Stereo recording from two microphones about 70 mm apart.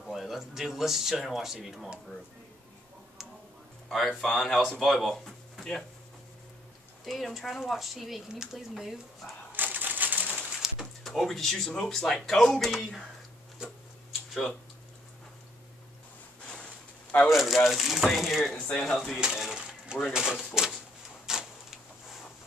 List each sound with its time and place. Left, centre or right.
0.0 s speech: centre
4.2 s speech: centre
7.1 s speech: centre
9.5 s crushing: right
10.6 s speech: centre
14.3 s speech: centre
16.4 s a sound: centre
17.3 s speech: centre
19.1 s a sound: centre
20.1 s speech: centre
21.3 s a sound: centre